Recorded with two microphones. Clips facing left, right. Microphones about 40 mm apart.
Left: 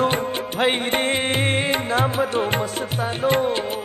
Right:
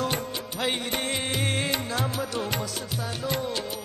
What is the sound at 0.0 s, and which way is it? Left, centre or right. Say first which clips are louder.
Music: left 8 dB; left.